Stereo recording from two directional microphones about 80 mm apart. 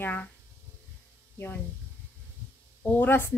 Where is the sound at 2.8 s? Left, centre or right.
Left.